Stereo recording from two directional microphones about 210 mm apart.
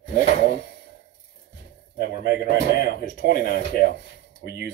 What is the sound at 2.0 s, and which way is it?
Speech, 50° right (ahead or behind).